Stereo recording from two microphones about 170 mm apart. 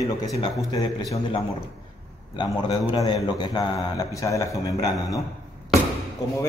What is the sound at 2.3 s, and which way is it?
A man's voice, 25° left (ahead or behind).